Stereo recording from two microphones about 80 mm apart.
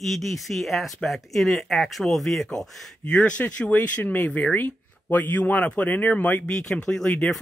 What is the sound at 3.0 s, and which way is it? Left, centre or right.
Speech, centre.